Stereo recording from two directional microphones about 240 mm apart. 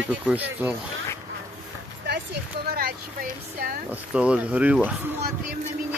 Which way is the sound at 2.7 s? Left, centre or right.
Right.